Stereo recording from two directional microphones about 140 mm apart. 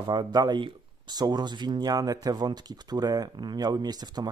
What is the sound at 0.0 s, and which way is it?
Speech, 30° right (ahead or behind).